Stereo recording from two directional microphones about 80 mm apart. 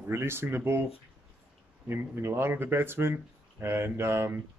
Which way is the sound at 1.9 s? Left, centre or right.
Right.